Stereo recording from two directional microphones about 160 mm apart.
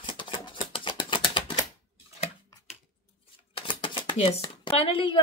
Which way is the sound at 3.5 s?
30° left (ahead or behind).